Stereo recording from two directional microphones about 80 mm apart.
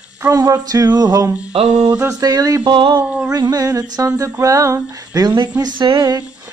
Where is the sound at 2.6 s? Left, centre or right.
Right.